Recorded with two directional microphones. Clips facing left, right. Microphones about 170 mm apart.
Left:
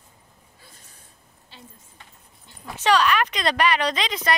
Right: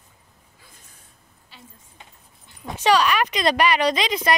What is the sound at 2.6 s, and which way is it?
Speech, 10° right (ahead or behind).